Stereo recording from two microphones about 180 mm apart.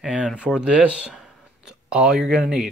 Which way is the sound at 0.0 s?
5° right (ahead or behind).